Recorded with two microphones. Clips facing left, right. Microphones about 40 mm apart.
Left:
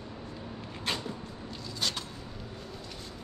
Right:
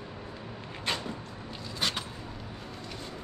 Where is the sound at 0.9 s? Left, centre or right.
Centre.